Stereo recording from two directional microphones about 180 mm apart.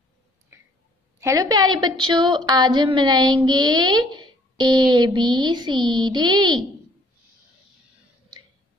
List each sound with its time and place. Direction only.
1.2 s a woman's voice: 20° right (ahead or behind)